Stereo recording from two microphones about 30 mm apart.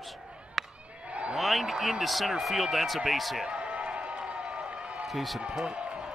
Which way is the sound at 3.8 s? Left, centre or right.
Right.